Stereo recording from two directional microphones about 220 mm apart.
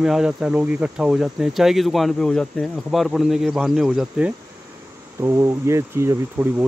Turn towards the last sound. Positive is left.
turn(degrees=-10)  # may be behind; listen again after turning